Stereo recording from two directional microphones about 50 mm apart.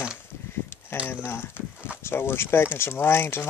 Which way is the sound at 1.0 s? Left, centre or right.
Left.